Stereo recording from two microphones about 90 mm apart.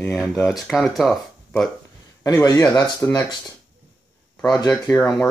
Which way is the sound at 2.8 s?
40° left (ahead or behind).